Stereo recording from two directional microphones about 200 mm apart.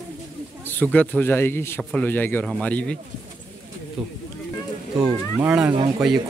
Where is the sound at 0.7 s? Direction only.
10° left (ahead or behind).